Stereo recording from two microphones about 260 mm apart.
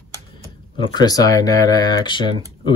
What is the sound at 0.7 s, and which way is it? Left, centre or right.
Speech, centre.